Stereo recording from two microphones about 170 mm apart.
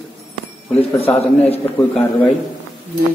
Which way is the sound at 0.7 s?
35° left (ahead or behind).